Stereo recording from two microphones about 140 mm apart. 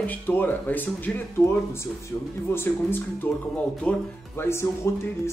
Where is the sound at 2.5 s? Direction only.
15° left (ahead or behind).